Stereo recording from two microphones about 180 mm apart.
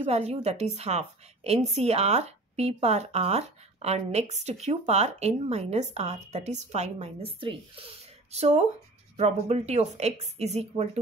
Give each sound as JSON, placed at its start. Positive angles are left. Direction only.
{"t": 0.0, "sound": "a woman's voice", "side_deg": -35}